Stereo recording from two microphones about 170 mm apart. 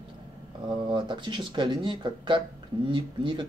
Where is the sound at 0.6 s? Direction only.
25° right (ahead or behind).